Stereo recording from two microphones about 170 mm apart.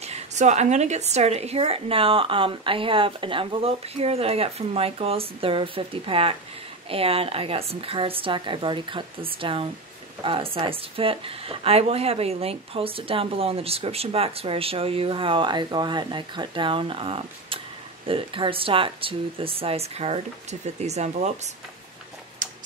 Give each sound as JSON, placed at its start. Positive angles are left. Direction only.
{"t": 0.0, "sound": "a woman's voice", "side_deg": -40}
{"t": 22.4, "sound": "tick-tock", "side_deg": -50}